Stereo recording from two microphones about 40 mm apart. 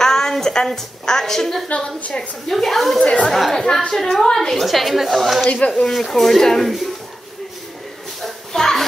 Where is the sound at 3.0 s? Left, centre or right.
Left.